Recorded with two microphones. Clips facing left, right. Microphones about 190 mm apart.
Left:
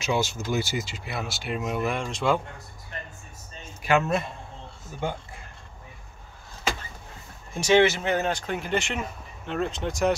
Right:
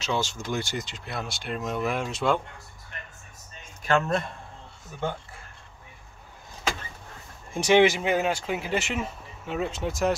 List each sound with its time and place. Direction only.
0.0 s speech: 10° left (ahead or behind)
2.9 s a sound: 35° left (ahead or behind)
3.6 s speech: 10° left (ahead or behind)
7.5 s speech: 15° right (ahead or behind)